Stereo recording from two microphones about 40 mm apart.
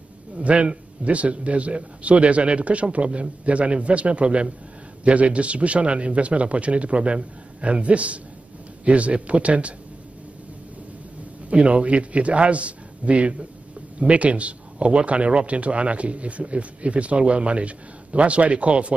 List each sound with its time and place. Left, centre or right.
0.4 s a man's voice: right
11.4 s a man's voice: right